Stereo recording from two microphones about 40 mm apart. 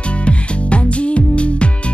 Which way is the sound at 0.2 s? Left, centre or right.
Left.